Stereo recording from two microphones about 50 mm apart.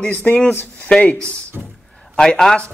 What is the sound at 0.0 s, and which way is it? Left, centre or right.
Speech, left.